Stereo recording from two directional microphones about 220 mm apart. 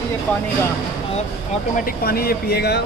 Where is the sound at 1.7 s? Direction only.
40° left (ahead or behind).